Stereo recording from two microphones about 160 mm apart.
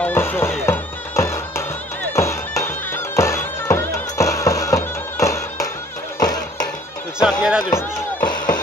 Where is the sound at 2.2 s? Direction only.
20° left (ahead or behind).